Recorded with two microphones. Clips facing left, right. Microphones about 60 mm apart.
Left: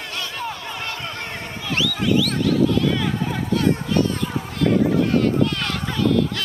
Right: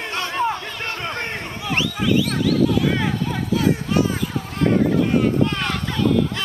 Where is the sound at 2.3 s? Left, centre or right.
Centre.